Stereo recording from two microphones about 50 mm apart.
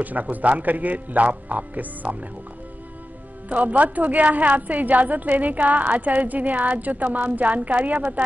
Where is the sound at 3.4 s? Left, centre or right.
Right.